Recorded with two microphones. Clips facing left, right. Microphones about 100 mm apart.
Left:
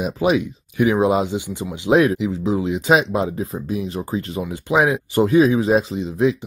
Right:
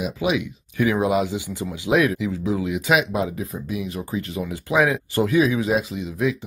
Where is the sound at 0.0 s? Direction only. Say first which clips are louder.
Left 4 dB; 40° left (ahead or behind).